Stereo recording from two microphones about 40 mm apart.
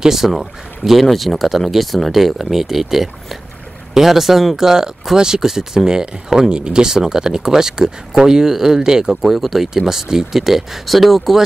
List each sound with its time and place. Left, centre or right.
0.0 s speech: centre
9.2 s speech: centre